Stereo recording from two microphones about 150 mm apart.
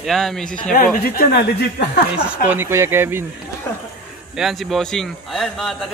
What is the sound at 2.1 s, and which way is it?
Speech, 10° right (ahead or behind).